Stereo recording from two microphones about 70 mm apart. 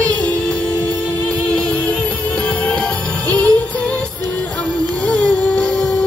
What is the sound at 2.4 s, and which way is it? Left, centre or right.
Jingle bell, centre.